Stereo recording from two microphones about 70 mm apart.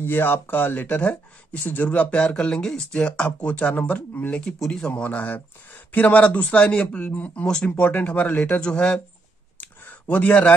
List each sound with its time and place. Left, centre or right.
0.0 s speech: left
4.5 s speech: centre
4.9 s speech: left
7.4 s speech: centre
9.6 s a sound: left